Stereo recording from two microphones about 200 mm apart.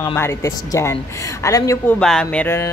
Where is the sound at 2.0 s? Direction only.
5° left (ahead or behind).